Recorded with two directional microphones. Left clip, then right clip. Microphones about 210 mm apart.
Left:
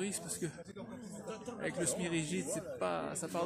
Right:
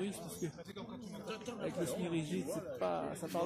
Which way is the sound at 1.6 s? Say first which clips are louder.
Left 2 dB; 10° left (ahead or behind).